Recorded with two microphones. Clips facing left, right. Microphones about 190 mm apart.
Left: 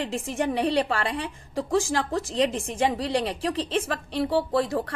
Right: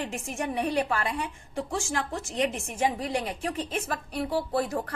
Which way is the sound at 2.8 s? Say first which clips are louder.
Left 3 dB; 85° left.